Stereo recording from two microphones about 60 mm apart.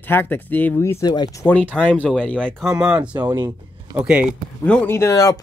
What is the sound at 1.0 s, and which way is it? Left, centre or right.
Speech, left.